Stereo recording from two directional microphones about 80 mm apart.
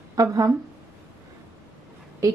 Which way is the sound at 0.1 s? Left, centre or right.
Right.